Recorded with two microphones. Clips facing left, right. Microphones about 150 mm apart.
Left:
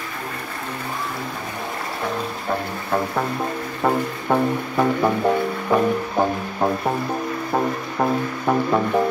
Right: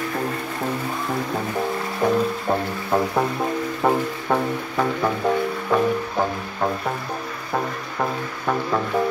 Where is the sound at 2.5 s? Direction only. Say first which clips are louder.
Right 1 dB; 25° right (ahead or behind).